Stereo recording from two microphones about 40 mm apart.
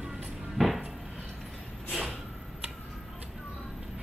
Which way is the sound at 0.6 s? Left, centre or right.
Centre.